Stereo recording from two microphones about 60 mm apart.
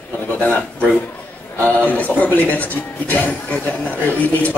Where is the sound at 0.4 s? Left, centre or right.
Left.